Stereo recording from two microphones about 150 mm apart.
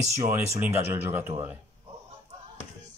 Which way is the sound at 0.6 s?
15° right (ahead or behind).